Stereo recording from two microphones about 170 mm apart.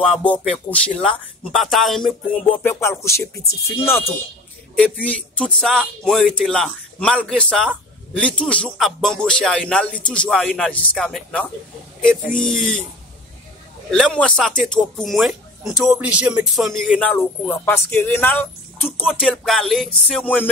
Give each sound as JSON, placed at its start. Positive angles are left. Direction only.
{"t": 0.1, "sound": "speech", "side_deg": 10}
{"t": 2.6, "sound": "speech", "side_deg": 15}
{"t": 5.0, "sound": "speech", "side_deg": 5}
{"t": 13.8, "sound": "speech", "side_deg": 0}